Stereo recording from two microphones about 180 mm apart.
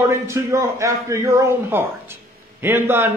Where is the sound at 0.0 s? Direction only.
15° right (ahead or behind).